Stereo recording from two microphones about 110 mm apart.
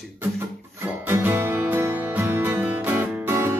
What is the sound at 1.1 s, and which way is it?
Music, 20° right (ahead or behind).